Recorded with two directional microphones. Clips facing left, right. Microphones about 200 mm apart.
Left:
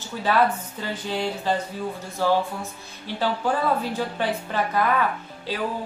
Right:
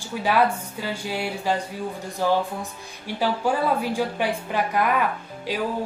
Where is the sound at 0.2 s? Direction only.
10° right (ahead or behind).